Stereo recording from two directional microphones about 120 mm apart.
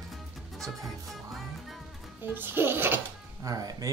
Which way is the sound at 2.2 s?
15° right (ahead or behind).